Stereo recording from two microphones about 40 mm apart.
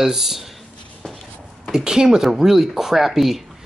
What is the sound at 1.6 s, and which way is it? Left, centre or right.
Speech, centre.